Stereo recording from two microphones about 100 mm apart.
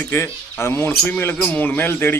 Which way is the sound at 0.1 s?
25° left (ahead or behind).